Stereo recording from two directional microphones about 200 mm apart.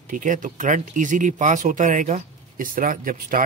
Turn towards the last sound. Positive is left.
turn(degrees=-45)  # may be behind; listen again after turning